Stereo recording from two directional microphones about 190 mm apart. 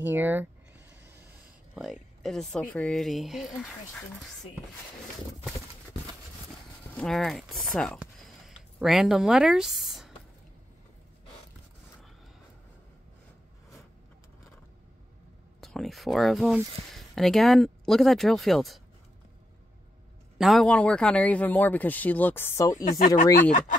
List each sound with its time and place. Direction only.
0.0 s speech: 10° right (ahead or behind)
1.8 s speech: centre (ahead or behind)
7.0 s speech: centre (ahead or behind)
8.0 s a sound: centre (ahead or behind)
15.6 s speech: centre (ahead or behind)
20.3 s a man's voice: centre (ahead or behind); by 22.8 s 15° left (ahead or behind)
22.8 s speech: 45° left (ahead or behind)